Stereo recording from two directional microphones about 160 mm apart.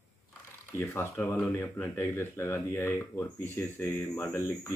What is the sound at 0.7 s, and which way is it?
Speech, 15° left (ahead or behind).